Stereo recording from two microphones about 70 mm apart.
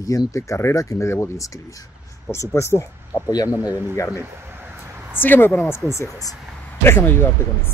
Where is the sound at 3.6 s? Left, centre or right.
Right.